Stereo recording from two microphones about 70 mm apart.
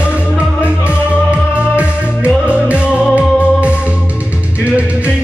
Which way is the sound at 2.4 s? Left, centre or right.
Centre.